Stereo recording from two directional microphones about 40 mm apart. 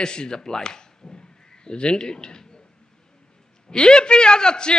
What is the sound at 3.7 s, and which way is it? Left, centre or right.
A man's voice, left.